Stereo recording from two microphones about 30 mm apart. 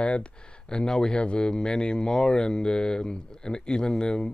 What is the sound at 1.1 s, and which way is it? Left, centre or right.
Speech, left.